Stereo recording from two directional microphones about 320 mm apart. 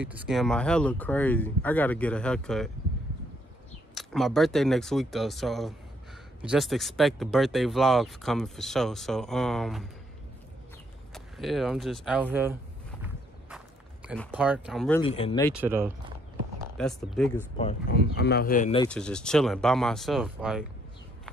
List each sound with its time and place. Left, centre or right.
0.0 s speech: centre
3.9 s speech: centre
11.1 s speech: centre
14.0 s speech: centre
15.0 s speech: centre
15.5 s speech: centre
17.8 s speech: left
18.8 s speech: centre